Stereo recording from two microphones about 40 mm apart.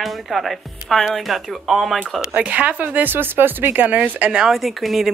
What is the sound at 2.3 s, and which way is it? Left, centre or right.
Speech, right.